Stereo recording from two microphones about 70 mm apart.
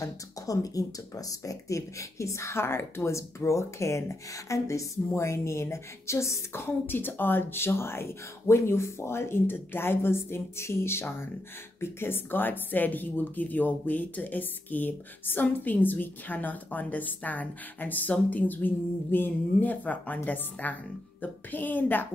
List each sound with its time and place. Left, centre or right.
0.0 s speech: left